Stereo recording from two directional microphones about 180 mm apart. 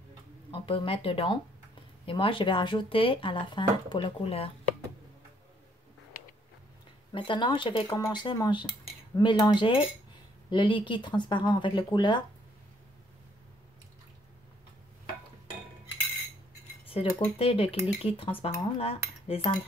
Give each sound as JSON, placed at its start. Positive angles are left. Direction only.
{"t": 0.5, "sound": "cutlery", "side_deg": 30}
{"t": 2.0, "sound": "dishes", "side_deg": 30}
{"t": 7.1, "sound": "dishes", "side_deg": 25}
{"t": 16.8, "sound": "cutlery", "side_deg": 30}